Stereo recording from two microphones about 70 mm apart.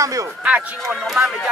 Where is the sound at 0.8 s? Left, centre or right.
Centre.